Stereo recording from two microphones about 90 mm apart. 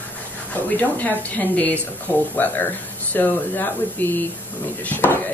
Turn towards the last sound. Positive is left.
turn(degrees=20)  # may be behind; listen again after turning